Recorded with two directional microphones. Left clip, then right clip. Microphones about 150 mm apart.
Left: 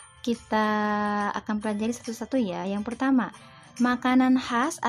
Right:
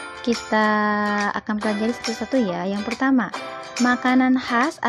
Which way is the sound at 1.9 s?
40° right (ahead or behind).